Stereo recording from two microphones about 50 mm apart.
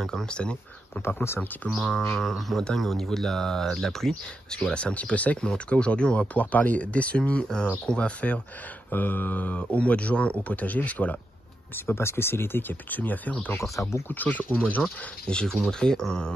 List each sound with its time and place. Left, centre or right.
0.0 s speech: centre
1.0 s speech: left
1.7 s bird: centre
2.8 s speech: centre
4.7 s speech: left
8.9 s speech: left
11.7 s speech: left
13.6 s speech: left
14.0 s speech: left
15.2 s speech: centre